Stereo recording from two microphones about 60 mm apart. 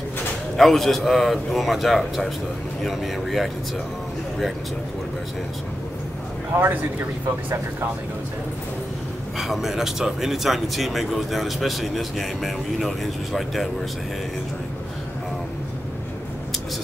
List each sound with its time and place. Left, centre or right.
0.6 s speech: centre
6.5 s a man's voice: right
9.4 s speech: centre